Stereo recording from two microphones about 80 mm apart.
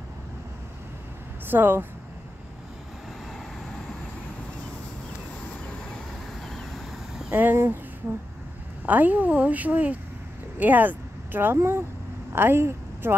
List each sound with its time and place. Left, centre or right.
1.5 s a woman's voice: right
6.5 s vehicle: centre
7.2 s speech: right
8.8 s a woman's voice: right